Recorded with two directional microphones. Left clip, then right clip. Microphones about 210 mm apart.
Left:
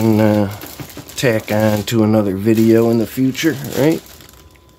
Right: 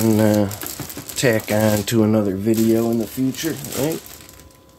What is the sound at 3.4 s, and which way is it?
Speech, 45° left (ahead or behind).